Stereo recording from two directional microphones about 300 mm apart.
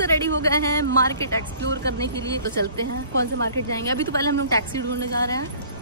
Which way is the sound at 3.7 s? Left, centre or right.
Centre.